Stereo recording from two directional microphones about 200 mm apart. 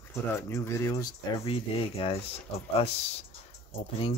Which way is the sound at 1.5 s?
30° left (ahead or behind).